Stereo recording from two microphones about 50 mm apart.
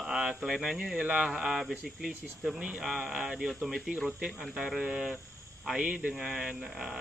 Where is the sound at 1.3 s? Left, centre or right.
Centre.